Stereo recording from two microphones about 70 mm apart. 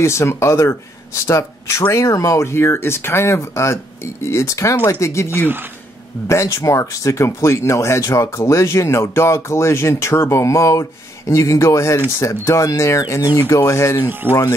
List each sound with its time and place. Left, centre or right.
0.0 s speech: left
14.0 s speech: right